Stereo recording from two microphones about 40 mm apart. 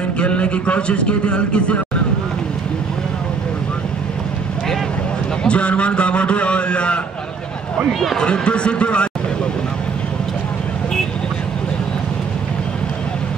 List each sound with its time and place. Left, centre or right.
0.2 s a man's voice: left
5.4 s a man's voice: left
8.2 s a man's voice: left